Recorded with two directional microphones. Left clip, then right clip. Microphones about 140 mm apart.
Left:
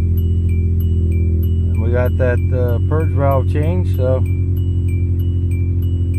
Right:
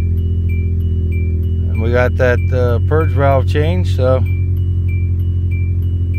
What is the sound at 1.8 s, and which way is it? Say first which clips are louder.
Speech: right 5 dB; 20° right (ahead or behind).